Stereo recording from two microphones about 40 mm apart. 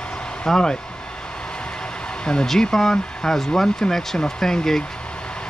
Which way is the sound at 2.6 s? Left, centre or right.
Centre.